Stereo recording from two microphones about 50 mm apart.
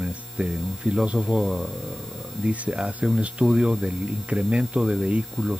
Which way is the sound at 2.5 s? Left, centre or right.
Right.